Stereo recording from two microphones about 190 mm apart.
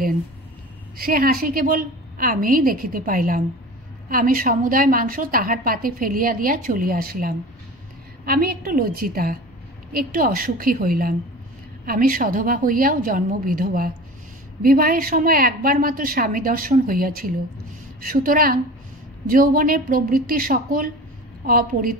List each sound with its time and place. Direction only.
0.9 s a woman's voice: 50° right (ahead or behind)